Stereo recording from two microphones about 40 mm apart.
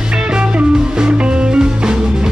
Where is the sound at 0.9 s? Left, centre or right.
Right.